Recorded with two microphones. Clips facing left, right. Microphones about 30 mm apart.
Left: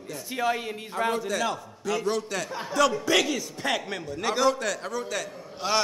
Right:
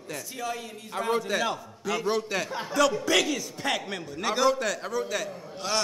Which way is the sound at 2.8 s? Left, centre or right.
Centre.